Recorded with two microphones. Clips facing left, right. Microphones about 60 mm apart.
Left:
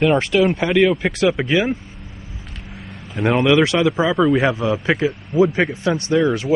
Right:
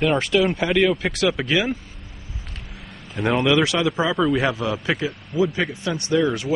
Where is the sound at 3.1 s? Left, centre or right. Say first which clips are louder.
Left 4 dB; centre.